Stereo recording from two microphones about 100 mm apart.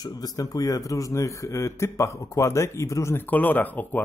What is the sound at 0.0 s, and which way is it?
Speech, 40° left (ahead or behind).